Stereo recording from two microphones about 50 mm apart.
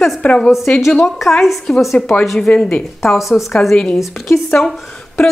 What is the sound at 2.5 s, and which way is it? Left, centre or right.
Speech, left.